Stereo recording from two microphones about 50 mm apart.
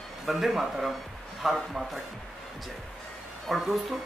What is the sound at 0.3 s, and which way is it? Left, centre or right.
A man's voice, centre.